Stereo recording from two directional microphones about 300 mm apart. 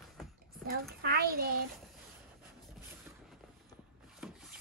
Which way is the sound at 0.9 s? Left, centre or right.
Right.